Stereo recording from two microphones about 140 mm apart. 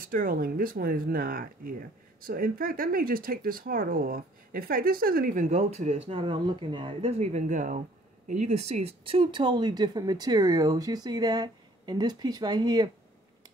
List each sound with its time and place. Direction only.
0.0 s speech: 85° right; by 7.8 s 65° right (ahead or behind)
8.3 s speech: 50° right (ahead or behind); by 12.9 s 30° right (ahead or behind)